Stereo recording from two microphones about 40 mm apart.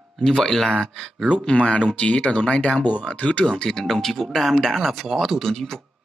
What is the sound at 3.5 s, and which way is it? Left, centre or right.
Speech, centre.